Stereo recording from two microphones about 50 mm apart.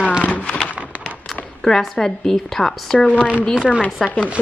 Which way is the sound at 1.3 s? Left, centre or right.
Centre.